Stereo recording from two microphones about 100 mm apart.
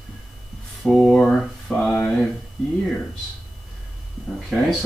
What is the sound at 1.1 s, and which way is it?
Speech, 5° left (ahead or behind).